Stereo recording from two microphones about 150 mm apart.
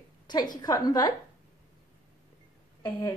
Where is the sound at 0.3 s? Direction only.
30° left (ahead or behind).